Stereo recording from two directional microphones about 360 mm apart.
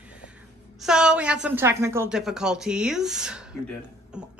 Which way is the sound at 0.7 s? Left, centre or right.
Centre.